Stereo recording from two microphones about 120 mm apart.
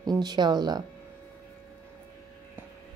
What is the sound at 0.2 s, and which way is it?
Speech, 35° right (ahead or behind).